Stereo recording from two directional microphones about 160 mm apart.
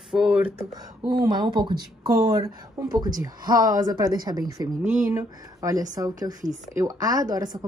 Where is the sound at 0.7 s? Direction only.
25° right (ahead or behind).